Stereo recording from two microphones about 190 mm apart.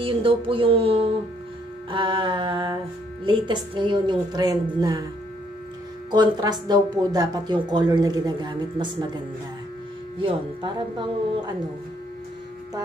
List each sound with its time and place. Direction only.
0.0 s speech: 30° right (ahead or behind)
6.1 s speech: 20° right (ahead or behind)
10.2 s speech: 25° right (ahead or behind)